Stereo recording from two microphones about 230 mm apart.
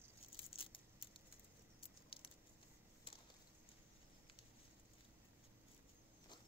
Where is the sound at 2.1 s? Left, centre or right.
Left.